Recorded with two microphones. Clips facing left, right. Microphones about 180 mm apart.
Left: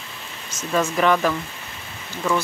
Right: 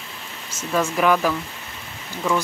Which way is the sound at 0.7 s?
5° right (ahead or behind).